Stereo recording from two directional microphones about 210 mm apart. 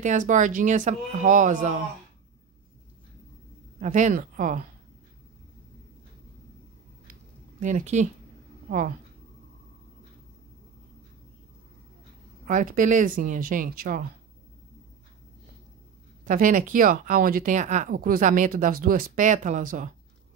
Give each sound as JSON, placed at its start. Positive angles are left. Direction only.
{"t": 0.0, "sound": "speech", "side_deg": -35}
{"t": 3.8, "sound": "speech", "side_deg": -35}
{"t": 7.6, "sound": "a woman's voice", "side_deg": -35}
{"t": 12.4, "sound": "speech", "side_deg": -35}
{"t": 16.3, "sound": "speech", "side_deg": -40}